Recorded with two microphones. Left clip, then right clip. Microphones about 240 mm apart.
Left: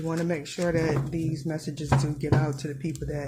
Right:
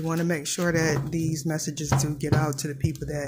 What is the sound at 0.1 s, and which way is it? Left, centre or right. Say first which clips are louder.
Speech: right 3 dB; centre.